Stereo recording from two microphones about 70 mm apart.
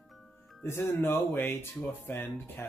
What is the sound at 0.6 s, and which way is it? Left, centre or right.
Speech, left.